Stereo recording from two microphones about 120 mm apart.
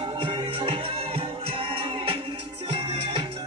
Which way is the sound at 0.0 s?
40° right (ahead or behind).